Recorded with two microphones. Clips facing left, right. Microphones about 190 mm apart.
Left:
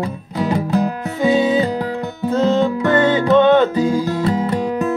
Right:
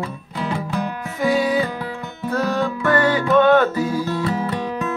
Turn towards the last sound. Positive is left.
turn(degrees=15)  # may be behind; listen again after turning